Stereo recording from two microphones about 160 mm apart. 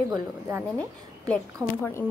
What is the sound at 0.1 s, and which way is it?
Speech, 15° right (ahead or behind).